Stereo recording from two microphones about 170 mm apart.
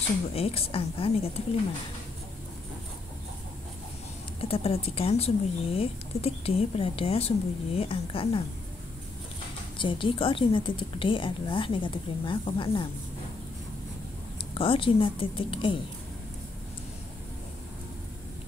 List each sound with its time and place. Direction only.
0.3 s speech: 35° left (ahead or behind)
4.4 s speech: 35° left (ahead or behind)
9.8 s speech: 30° left (ahead or behind)
14.5 s speech: 30° left (ahead or behind)